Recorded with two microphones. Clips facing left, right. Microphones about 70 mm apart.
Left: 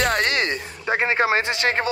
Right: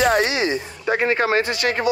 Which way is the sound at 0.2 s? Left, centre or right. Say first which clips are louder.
Right 2 dB; left.